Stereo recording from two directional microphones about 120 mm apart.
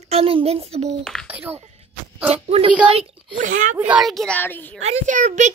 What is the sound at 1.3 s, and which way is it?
Speech, 15° right (ahead or behind).